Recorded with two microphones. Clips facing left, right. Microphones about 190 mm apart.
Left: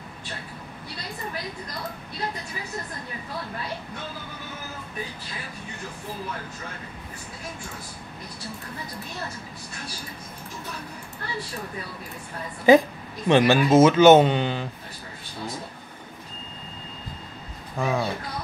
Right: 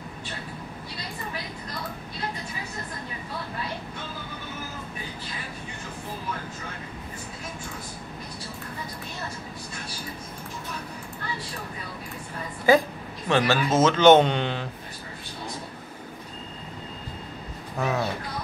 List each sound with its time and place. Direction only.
12.7 s speech: 20° left (ahead or behind); by 14.7 s centre (ahead or behind)
17.7 s speech: centre (ahead or behind)